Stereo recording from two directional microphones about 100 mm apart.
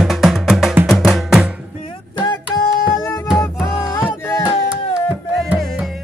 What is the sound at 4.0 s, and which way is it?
Music, 25° left (ahead or behind).